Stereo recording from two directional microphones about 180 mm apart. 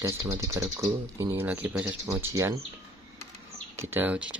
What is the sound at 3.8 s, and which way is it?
Speech, 10° right (ahead or behind).